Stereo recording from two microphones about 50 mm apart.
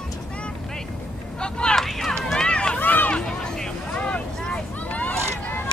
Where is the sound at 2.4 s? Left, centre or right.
Centre.